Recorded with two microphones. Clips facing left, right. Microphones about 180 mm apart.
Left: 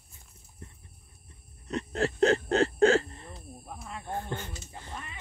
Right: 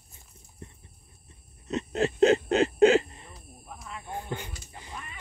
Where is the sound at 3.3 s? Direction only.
30° left (ahead or behind).